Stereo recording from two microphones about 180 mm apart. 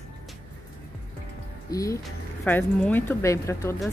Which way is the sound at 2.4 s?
10° left (ahead or behind).